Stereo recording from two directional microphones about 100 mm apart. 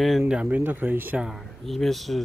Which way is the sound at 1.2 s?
Centre (ahead or behind).